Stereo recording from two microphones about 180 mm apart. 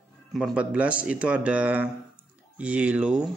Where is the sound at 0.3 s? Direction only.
Centre (ahead or behind).